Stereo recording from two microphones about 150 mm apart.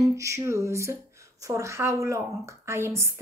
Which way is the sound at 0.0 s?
20° right (ahead or behind).